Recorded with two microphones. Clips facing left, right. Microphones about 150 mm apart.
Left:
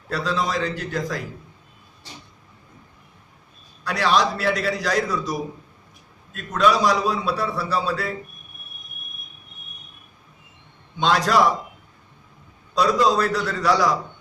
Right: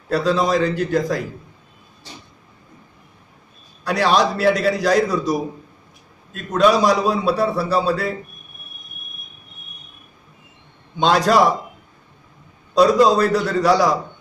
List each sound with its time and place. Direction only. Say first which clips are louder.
0.1 s a man's voice: right 7 dB; 40° right (ahead or behind)
3.8 s a man's voice: right 3 dB; 35° right (ahead or behind)
11.0 s a man's voice: right 4 dB; 35° right (ahead or behind)
12.7 s a man's voice: right 5 dB; 35° right (ahead or behind)